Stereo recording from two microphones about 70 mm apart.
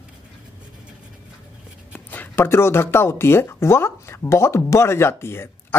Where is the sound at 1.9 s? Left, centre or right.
Left.